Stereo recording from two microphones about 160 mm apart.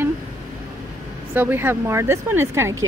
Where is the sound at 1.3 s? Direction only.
15° right (ahead or behind).